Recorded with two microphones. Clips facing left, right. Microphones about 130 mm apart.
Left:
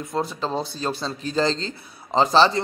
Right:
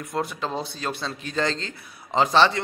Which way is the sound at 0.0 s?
25° left (ahead or behind).